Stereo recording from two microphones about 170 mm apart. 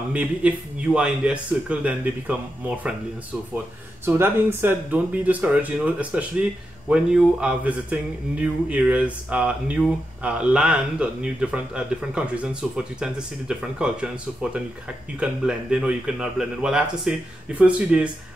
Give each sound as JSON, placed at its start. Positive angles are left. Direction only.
{"t": 0.1, "sound": "speech", "side_deg": -5}
{"t": 4.0, "sound": "speech", "side_deg": -15}